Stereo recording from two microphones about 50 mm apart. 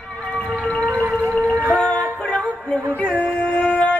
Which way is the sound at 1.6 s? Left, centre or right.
Left.